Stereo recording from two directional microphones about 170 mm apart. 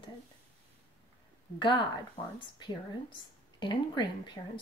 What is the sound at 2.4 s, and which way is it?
Speech, 30° left (ahead or behind).